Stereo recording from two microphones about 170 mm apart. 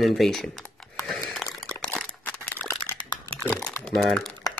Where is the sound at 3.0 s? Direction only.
25° left (ahead or behind).